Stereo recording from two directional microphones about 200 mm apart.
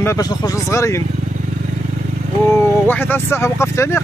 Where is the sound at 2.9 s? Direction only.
10° left (ahead or behind).